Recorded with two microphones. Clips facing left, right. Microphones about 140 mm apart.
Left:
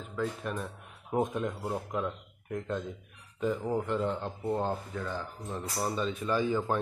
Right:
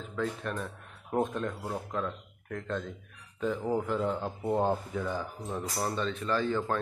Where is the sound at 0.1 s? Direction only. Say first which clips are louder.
Even; 5° left (ahead or behind).